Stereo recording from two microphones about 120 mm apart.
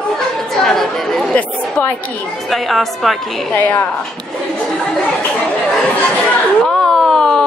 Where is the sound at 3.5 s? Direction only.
15° left (ahead or behind).